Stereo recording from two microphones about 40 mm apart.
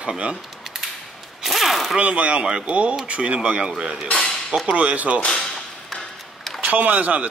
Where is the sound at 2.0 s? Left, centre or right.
Right.